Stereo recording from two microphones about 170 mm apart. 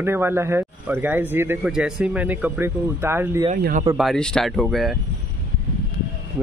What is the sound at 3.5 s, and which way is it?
Speech, 55° right (ahead or behind).